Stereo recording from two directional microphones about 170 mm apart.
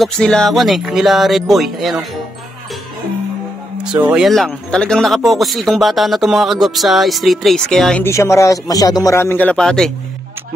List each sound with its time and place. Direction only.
0.0 s speech: 5° left (ahead or behind)
4.1 s speech: centre (ahead or behind)
8.0 s speech: 15° left (ahead or behind)